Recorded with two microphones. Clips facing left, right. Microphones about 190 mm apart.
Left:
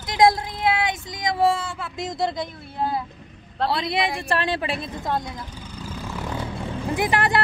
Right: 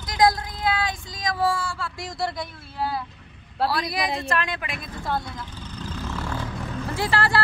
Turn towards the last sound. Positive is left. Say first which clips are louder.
# left 2 dB
turn(degrees=20)  # may be behind; listen again after turning